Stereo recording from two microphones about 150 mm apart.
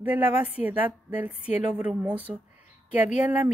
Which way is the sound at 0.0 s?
10° right (ahead or behind).